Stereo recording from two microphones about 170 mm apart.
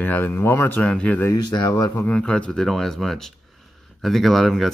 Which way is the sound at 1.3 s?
20° left (ahead or behind).